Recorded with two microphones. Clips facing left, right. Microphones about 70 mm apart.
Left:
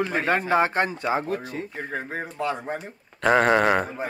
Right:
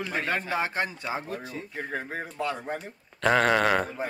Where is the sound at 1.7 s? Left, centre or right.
Centre.